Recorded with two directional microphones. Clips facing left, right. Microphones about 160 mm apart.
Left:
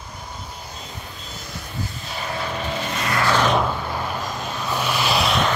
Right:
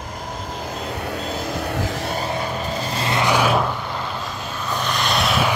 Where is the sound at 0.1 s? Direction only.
90° right.